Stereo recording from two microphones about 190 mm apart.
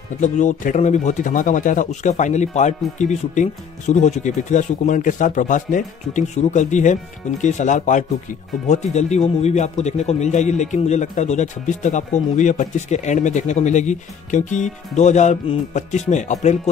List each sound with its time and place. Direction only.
0.2 s a man's voice: 40° left (ahead or behind)